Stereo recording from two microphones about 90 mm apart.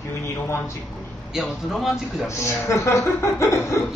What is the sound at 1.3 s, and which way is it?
Speech, centre (ahead or behind).